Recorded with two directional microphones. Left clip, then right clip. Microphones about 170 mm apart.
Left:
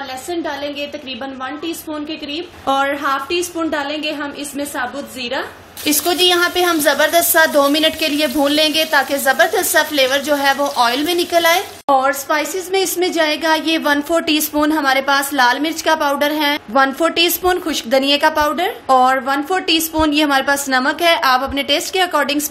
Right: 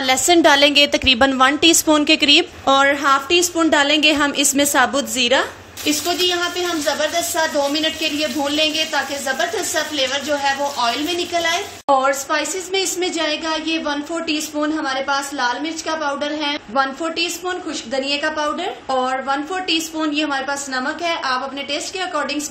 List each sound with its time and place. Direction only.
0.1 s a woman's voice: 50° right (ahead or behind)
2.6 s a woman's voice: 15° right (ahead or behind)
3.7 s a woman's voice: 35° right (ahead or behind)
5.9 s speech: 40° left (ahead or behind)
11.9 s a woman's voice: 20° left (ahead or behind); by 22.4 s 50° left (ahead or behind)